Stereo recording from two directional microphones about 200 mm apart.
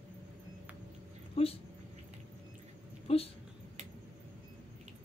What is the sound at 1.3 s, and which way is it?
Speech, 30° left (ahead or behind).